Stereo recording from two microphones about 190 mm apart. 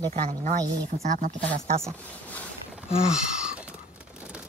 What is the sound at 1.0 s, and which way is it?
Speech, 40° right (ahead or behind).